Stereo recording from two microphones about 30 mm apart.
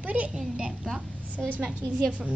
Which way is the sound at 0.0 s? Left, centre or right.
Right.